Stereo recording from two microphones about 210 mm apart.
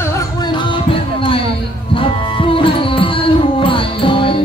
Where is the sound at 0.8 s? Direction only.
25° left (ahead or behind).